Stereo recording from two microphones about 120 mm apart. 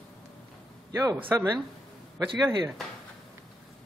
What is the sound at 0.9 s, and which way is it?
Speech, 30° right (ahead or behind).